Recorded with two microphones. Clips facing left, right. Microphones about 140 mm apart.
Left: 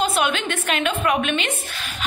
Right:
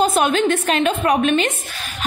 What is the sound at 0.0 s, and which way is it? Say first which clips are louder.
A woman's voice: right 6 dB; 40° right (ahead or behind).